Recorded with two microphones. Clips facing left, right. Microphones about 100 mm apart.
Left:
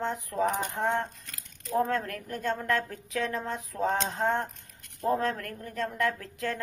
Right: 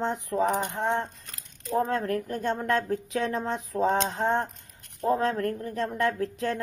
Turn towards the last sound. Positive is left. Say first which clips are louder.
# right 4 dB
turn(degrees=-25)  # may be behind; listen again after turning